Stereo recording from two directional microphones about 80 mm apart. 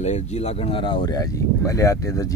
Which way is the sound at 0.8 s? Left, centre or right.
Left.